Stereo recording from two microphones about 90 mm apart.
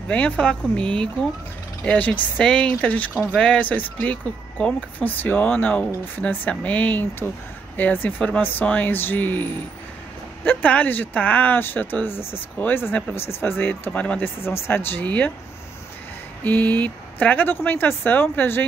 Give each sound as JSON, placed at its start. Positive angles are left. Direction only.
{"t": 0.1, "sound": "speech", "side_deg": 10}
{"t": 14.4, "sound": "speech", "side_deg": 25}
{"t": 16.4, "sound": "speech", "side_deg": 20}